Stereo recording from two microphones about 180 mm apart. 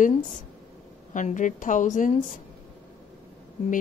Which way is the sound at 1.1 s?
45° left (ahead or behind).